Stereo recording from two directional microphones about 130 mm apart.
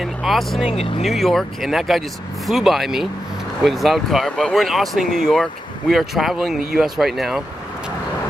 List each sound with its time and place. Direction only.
0.0 s speech: centre (ahead or behind)
0.7 s speech: 50° left (ahead or behind)
1.0 s speech: centre (ahead or behind)